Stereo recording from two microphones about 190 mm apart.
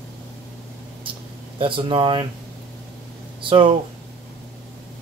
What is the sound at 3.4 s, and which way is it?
Speech, 25° right (ahead or behind).